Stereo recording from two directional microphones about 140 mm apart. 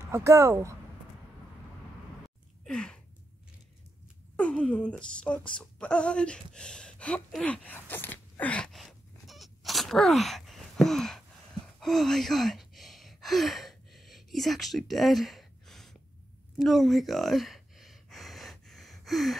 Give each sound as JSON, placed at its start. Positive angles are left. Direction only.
{"t": 0.0, "sound": "speech", "side_deg": -20}
{"t": 2.6, "sound": "gasp", "side_deg": 5}
{"t": 4.4, "sound": "a sound", "side_deg": 5}
{"t": 16.5, "sound": "gasp", "side_deg": 0}